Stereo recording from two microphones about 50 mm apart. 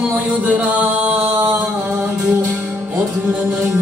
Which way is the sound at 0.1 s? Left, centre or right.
Right.